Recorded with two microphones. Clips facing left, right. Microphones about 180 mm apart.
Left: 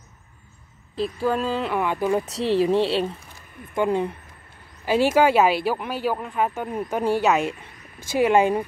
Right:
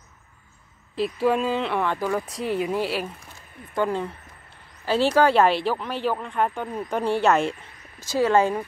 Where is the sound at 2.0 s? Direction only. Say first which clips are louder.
Left 3 dB; 25° left (ahead or behind).